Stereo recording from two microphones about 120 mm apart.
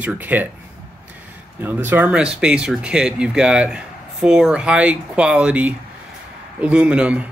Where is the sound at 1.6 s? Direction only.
15° right (ahead or behind).